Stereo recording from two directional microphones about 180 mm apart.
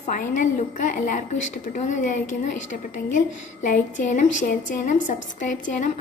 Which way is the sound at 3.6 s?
45° left (ahead or behind).